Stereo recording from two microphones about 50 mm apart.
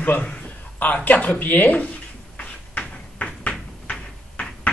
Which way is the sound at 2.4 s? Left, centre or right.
Left.